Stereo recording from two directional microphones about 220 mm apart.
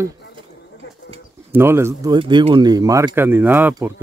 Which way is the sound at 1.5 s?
10° right (ahead or behind).